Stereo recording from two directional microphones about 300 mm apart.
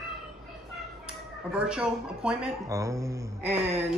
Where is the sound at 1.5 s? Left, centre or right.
Centre.